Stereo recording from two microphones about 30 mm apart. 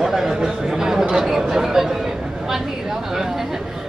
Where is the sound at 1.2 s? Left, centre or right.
Centre.